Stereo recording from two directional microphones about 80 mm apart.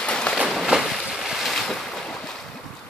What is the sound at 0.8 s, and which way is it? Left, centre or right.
Boat, centre.